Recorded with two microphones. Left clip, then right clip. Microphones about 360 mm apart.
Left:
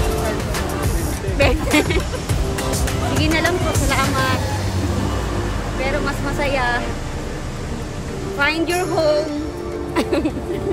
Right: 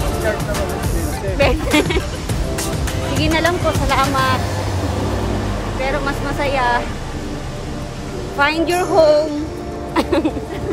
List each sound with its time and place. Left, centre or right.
1.4 s music: centre
3.2 s music: centre
5.8 s speech: centre
8.4 s speech: centre